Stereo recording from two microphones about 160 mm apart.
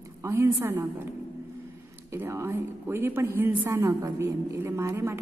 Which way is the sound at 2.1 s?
15° right (ahead or behind).